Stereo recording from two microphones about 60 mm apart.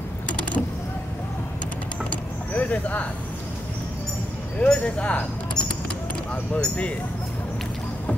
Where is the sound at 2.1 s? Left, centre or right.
Left.